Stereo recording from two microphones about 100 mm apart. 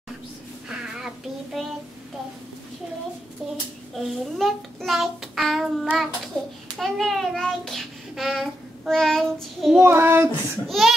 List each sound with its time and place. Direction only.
0.7 s child singing: 5° right (ahead or behind)
3.9 s child singing: centre (ahead or behind)
6.4 s a child's voice: 10° left (ahead or behind)
6.8 s child singing: centre (ahead or behind)
9.8 s child singing: 25° right (ahead or behind)
10.7 s child singing: centre (ahead or behind)